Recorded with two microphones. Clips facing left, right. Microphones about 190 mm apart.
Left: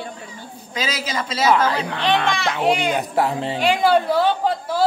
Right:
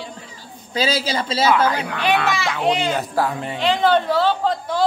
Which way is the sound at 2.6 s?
15° left (ahead or behind).